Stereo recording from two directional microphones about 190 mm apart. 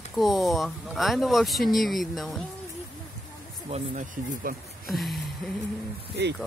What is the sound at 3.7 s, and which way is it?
Speech, 45° right (ahead or behind).